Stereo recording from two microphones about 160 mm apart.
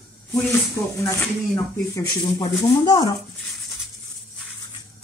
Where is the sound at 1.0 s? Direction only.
20° left (ahead or behind).